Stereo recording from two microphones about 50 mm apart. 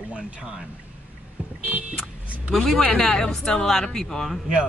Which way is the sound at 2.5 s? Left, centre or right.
Centre.